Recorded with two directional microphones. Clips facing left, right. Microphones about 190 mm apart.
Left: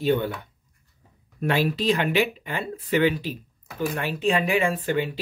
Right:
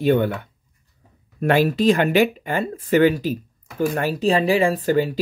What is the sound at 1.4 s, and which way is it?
Speech, 50° right (ahead or behind).